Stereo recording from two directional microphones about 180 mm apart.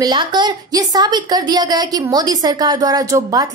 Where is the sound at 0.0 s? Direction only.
25° right (ahead or behind).